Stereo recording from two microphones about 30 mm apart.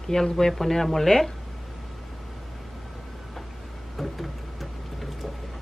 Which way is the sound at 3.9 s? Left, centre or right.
Centre.